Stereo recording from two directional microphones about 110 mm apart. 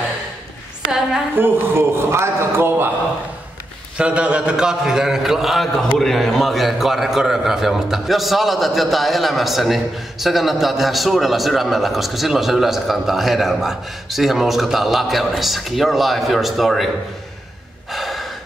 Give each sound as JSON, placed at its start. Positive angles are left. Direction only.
{"t": 1.3, "sound": "a man's voice", "side_deg": -20}
{"t": 4.0, "sound": "a man's voice", "side_deg": -10}
{"t": 17.9, "sound": "gasp", "side_deg": 0}